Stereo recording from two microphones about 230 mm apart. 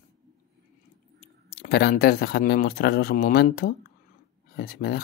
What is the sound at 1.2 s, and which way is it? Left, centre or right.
Speech, left.